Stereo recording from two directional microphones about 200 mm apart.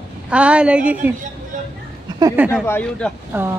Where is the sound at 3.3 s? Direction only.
10° right (ahead or behind).